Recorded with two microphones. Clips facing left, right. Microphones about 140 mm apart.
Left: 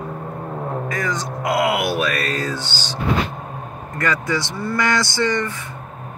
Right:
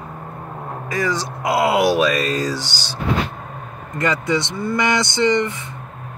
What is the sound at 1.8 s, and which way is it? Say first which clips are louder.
Mantra: right 5 dB; 90° right.